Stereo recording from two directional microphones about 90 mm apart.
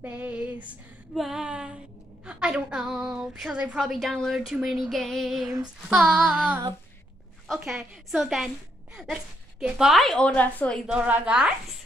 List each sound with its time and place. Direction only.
0.0 s a woman's voice: 15° right (ahead or behind)
1.1 s a woman's voice: 5° right (ahead or behind); by 10.8 s 15° left (ahead or behind)
10.9 s a woman's voice: 10° right (ahead or behind)